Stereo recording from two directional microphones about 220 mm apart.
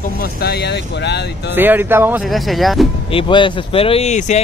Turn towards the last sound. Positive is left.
turn(degrees=30)  # may be behind; listen again after turning